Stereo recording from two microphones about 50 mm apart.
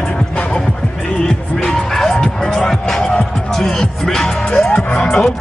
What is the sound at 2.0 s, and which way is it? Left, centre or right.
Music, centre.